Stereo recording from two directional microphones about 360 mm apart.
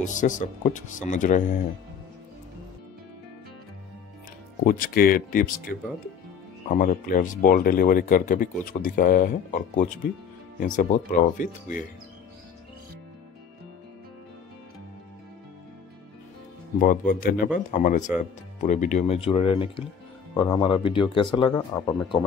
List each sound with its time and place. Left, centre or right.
0.0 s speech: left
4.6 s speech: left
16.8 s speech: left